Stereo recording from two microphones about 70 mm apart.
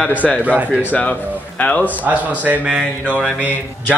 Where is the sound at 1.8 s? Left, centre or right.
Right.